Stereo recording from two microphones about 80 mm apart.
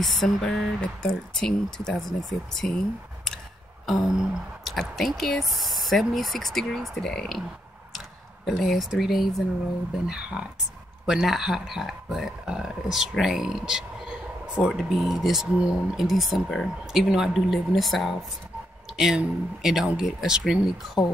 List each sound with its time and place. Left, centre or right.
0.0 s speech: centre
3.8 s a sound: centre
4.7 s speech: centre
8.5 s speech: centre